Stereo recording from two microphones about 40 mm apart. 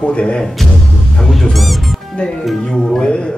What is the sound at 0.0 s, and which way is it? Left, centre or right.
Speech, left.